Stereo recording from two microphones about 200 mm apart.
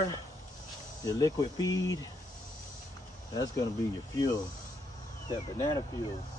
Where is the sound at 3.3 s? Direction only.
20° left (ahead or behind).